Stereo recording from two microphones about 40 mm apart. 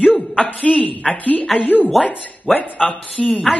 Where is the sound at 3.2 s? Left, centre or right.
Left.